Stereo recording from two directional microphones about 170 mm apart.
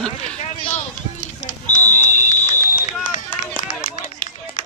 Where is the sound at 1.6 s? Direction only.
45° left (ahead or behind).